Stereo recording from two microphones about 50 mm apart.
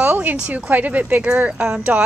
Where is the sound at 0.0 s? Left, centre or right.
Right.